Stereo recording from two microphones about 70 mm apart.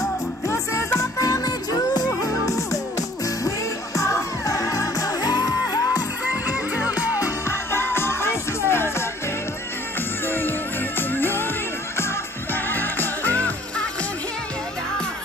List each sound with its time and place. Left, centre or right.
0.0 s music: left
1.2 s music: left
7.2 s music: left
11.0 s music: left
12.6 s music: left